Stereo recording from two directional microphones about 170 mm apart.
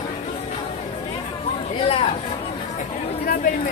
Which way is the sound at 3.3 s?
55° left (ahead or behind).